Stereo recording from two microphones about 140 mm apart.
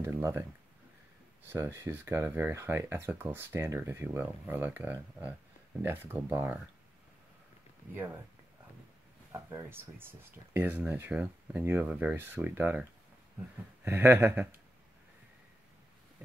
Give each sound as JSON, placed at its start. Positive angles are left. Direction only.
{"t": 0.0, "sound": "speech", "side_deg": -20}
{"t": 1.5, "sound": "speech", "side_deg": -20}
{"t": 7.9, "sound": "speech", "side_deg": -15}
{"t": 9.3, "sound": "speech", "side_deg": -20}
{"t": 13.8, "sound": "speech", "side_deg": -15}